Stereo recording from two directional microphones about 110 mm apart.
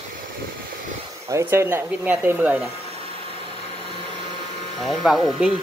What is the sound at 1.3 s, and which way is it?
Speech, 25° right (ahead or behind).